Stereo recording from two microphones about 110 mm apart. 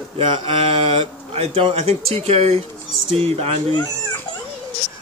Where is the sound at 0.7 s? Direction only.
65° right (ahead or behind).